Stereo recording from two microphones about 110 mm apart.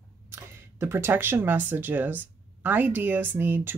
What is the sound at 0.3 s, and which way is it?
Speech, 20° right (ahead or behind).